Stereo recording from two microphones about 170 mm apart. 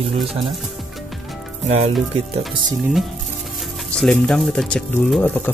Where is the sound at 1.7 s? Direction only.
40° right (ahead or behind).